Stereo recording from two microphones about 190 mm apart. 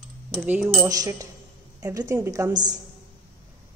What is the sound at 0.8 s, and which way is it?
A woman's voice, 20° right (ahead or behind).